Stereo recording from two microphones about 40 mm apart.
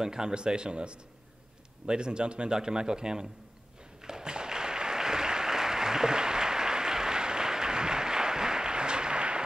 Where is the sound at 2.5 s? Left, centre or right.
Centre.